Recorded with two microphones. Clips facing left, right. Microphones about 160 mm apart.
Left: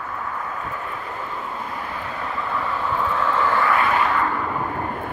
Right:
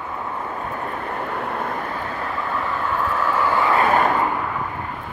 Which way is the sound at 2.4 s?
Centre (ahead or behind).